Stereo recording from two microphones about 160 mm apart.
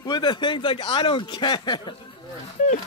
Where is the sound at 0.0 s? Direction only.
25° left (ahead or behind).